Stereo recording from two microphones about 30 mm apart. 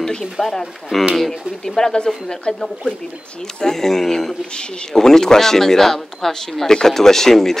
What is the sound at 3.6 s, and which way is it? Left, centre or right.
Speech, centre.